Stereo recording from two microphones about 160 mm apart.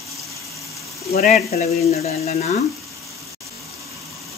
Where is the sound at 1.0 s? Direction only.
40° left (ahead or behind).